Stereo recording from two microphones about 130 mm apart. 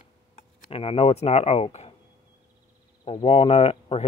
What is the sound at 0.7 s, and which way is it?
Speech, 50° left (ahead or behind).